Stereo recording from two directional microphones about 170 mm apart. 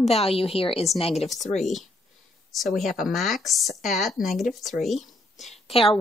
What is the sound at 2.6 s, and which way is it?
Speech, centre (ahead or behind).